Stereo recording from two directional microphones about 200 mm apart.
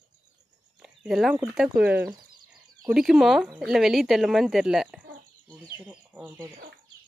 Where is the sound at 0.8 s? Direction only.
Centre (ahead or behind).